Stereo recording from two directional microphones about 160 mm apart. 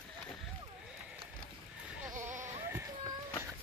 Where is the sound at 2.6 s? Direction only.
15° right (ahead or behind).